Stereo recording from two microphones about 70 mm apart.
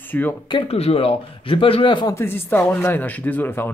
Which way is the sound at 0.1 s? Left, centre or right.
Left.